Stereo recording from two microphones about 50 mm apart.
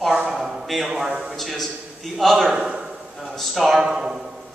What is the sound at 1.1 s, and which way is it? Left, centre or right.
Speech, centre.